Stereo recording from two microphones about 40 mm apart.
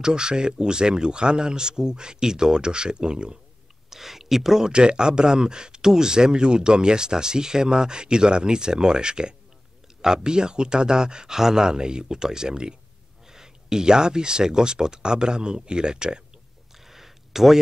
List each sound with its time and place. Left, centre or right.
0.0 s speech: right
3.9 s speech: centre
4.7 s speech: right
16.8 s a sound: centre